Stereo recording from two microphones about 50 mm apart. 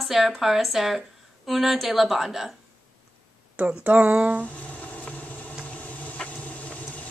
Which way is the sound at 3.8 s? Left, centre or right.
Right.